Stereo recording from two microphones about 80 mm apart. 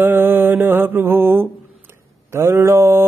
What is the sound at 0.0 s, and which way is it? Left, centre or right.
Mantra, right.